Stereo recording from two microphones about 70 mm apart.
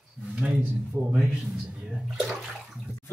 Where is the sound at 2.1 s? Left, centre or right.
Centre.